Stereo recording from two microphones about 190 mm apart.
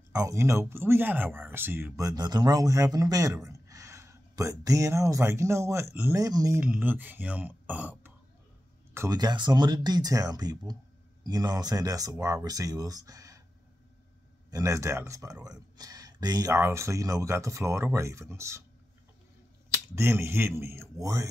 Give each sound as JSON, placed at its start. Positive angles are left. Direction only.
{"t": 0.1, "sound": "speech", "side_deg": -15}
{"t": 6.6, "sound": "speech", "side_deg": -10}
{"t": 14.5, "sound": "speech", "side_deg": -15}
{"t": 19.7, "sound": "speech", "side_deg": -15}